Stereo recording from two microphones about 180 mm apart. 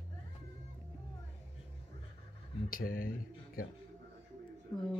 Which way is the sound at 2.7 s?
55° left (ahead or behind).